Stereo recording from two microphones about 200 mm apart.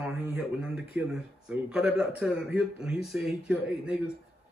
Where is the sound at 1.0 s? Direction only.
5° right (ahead or behind).